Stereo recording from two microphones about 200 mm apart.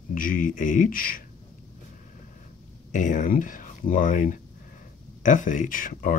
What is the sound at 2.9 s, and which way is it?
Speech, 40° left (ahead or behind).